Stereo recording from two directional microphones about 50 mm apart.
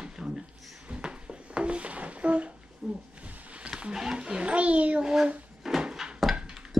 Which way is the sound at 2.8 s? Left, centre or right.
Centre.